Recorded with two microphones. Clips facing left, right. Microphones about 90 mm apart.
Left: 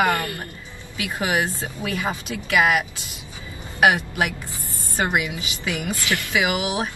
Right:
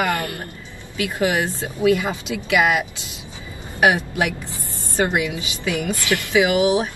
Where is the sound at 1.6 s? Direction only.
20° right (ahead or behind).